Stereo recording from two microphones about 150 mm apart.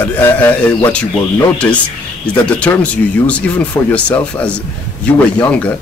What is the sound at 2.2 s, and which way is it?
Speech, 10° left (ahead or behind).